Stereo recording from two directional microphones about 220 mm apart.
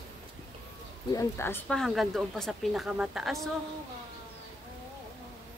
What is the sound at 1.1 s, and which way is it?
Speech, 10° left (ahead or behind).